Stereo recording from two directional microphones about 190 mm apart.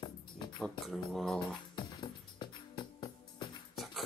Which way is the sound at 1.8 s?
25° left (ahead or behind).